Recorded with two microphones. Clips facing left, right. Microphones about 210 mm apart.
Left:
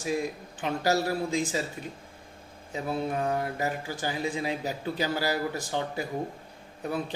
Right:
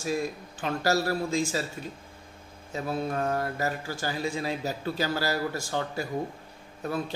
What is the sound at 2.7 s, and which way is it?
Speech, 15° left (ahead or behind).